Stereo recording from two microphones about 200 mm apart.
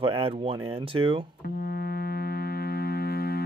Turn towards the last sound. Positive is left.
turn(degrees=50)  # may be behind; listen again after turning